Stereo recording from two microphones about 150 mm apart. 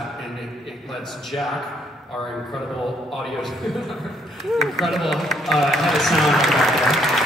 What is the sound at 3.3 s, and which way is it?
Speech, centre (ahead or behind).